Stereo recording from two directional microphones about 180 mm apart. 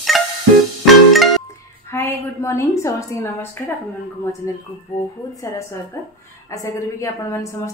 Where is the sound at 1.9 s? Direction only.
15° left (ahead or behind).